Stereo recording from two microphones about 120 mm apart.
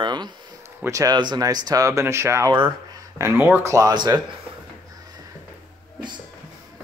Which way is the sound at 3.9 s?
35° right (ahead or behind).